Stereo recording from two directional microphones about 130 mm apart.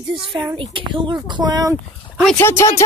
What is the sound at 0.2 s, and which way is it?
Speech, 40° right (ahead or behind).